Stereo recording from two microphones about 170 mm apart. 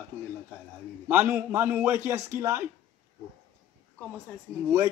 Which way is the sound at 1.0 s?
10° right (ahead or behind).